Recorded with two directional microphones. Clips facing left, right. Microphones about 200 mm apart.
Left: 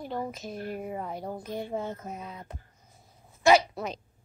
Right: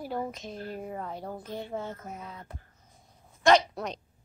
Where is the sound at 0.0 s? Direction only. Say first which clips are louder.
Even; 5° right (ahead or behind).